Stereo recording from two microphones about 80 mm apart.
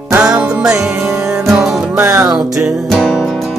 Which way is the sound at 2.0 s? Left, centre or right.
Right.